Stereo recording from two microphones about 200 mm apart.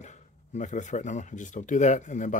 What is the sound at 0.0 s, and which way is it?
Speech, 35° left (ahead or behind).